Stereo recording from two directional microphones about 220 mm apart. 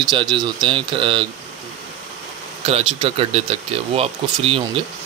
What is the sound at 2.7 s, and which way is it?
Speech, 25° right (ahead or behind).